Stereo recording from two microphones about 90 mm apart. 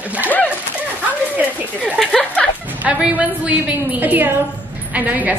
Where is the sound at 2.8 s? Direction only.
15° right (ahead or behind).